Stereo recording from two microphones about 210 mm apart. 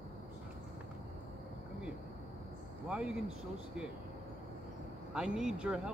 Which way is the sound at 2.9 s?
5° right (ahead or behind).